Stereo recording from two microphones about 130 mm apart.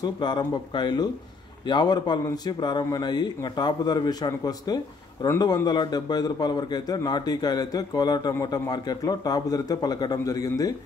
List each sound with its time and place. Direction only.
0.0 s a man's voice: 35° left (ahead or behind)